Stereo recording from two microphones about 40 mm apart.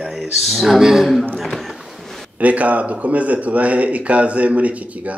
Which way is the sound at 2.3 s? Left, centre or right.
Right.